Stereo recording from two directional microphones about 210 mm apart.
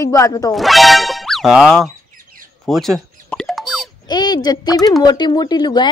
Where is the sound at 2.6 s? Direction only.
Centre (ahead or behind).